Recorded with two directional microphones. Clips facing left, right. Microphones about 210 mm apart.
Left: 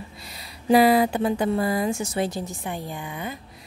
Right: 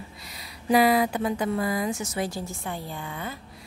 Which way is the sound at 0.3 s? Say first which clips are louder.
Left 4 dB; 30° left (ahead or behind).